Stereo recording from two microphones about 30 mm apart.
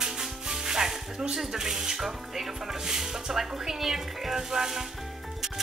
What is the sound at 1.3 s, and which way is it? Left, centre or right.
Speech, centre.